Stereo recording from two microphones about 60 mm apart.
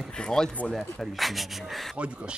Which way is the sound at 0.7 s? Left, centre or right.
Centre.